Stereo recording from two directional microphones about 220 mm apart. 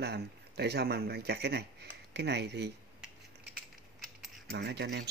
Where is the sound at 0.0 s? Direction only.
50° right (ahead or behind).